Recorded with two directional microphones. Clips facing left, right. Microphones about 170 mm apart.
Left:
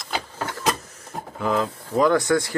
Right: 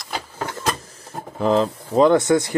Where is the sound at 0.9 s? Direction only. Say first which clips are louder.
Right 4 dB; 30° right (ahead or behind).